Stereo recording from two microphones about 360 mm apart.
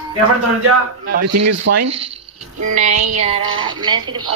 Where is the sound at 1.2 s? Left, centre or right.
Right.